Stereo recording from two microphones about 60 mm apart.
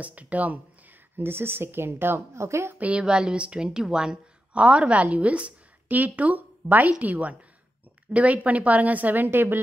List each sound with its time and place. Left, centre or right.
0.0 s a woman's voice: right
1.1 s a woman's voice: right
2.9 s a woman's voice: centre; by 9.6 s right